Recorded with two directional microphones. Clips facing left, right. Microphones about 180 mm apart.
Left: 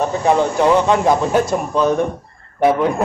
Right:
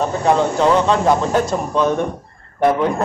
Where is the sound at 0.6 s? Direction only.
15° left (ahead or behind).